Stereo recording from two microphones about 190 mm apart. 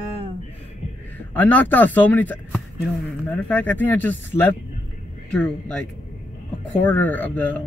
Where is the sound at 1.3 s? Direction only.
10° left (ahead or behind).